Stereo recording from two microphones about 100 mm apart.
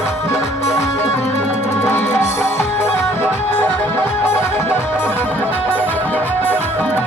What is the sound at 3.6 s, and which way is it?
Music, 25° left (ahead or behind).